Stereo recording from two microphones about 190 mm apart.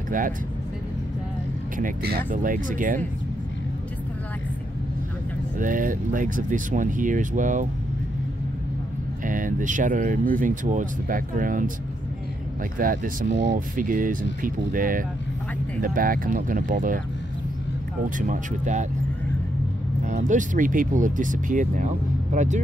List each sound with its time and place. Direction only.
1.8 s speech: 50° right (ahead or behind)
5.6 s speech: 45° right (ahead or behind)
9.2 s speech: 45° right (ahead or behind)
12.7 s speech: 45° right (ahead or behind)
18.1 s speech: 40° right (ahead or behind)
20.1 s speech: 40° right (ahead or behind)